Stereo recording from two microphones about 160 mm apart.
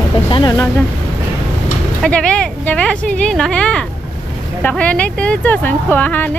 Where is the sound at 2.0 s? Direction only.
5° left (ahead or behind).